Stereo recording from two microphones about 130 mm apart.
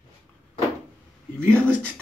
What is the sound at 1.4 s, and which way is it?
Speech, 10° left (ahead or behind).